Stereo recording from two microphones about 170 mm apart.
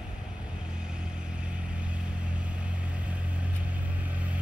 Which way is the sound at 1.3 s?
5° right (ahead or behind).